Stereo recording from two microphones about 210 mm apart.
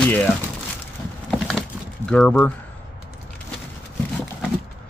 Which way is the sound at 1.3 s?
Centre (ahead or behind).